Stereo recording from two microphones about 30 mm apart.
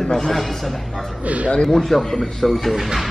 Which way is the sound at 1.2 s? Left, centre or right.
Right.